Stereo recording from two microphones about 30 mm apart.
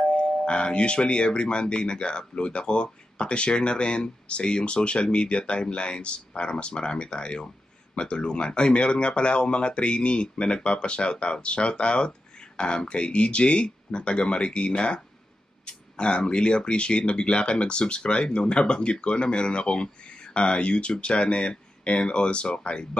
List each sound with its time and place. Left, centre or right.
0.1 s speech: left